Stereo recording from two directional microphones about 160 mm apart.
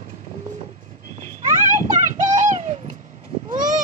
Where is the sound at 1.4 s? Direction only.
50° right (ahead or behind).